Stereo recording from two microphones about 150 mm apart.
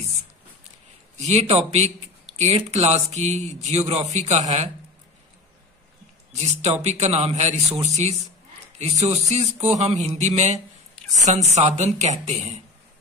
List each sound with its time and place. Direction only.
1.2 s speech: 45° right (ahead or behind)
6.3 s speech: 45° right (ahead or behind)